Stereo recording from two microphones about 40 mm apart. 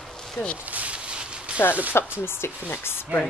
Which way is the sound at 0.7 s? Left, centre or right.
Right.